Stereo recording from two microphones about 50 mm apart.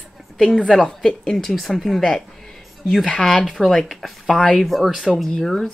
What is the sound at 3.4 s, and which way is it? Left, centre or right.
Speech, centre.